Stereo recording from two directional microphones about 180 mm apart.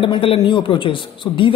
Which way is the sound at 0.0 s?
30° left (ahead or behind).